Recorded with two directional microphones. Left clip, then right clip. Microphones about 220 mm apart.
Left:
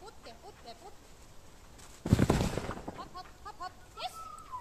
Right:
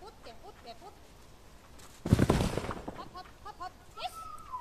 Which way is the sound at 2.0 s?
15° right (ahead or behind).